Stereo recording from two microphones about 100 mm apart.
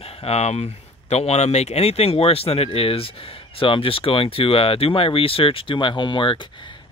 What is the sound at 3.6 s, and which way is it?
Speech, 65° left (ahead or behind).